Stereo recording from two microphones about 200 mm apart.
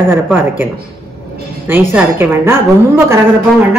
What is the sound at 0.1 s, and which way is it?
Speech, 10° right (ahead or behind).